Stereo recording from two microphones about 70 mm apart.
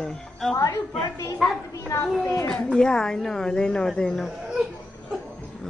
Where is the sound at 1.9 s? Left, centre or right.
Left.